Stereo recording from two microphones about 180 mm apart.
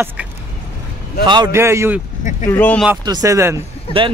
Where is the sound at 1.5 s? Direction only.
15° right (ahead or behind).